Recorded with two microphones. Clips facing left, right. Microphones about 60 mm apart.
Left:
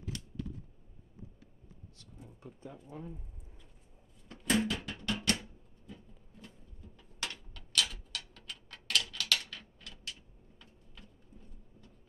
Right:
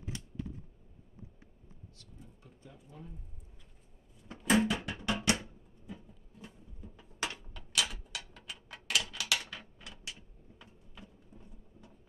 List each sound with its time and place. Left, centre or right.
0.0 s typing: right
4.3 s music: centre
5.9 s a sound: centre